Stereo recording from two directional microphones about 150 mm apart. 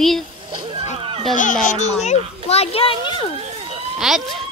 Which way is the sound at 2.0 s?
45° left (ahead or behind).